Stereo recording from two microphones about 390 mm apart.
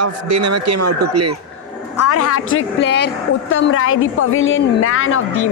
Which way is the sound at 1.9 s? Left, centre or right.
Left.